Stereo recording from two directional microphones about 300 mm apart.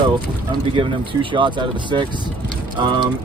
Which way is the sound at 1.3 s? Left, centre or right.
Centre.